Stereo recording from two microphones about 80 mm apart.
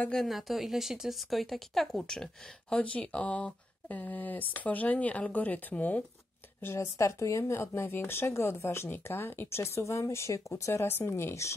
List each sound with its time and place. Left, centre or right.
0.1 s speech: centre; by 6.0 s left
6.6 s speech: left